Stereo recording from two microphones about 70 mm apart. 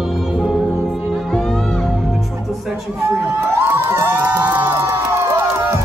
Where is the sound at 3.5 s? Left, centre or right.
Right.